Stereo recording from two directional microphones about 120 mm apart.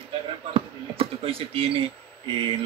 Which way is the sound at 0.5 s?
50° right (ahead or behind).